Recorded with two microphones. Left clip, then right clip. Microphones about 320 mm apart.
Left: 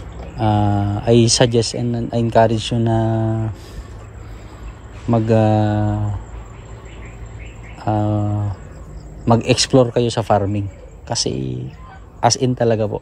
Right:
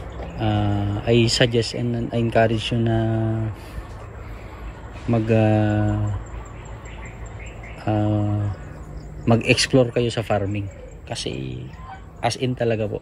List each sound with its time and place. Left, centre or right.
0.4 s speech: centre
1.8 s speech: left
2.0 s speech: centre
5.1 s speech: centre
7.8 s speech: centre
9.6 s speech: centre